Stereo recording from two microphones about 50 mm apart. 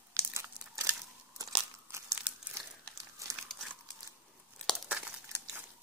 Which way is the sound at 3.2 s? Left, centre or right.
Right.